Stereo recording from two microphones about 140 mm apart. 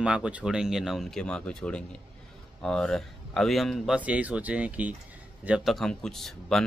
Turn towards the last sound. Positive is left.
turn(degrees=5)  # may be behind; listen again after turning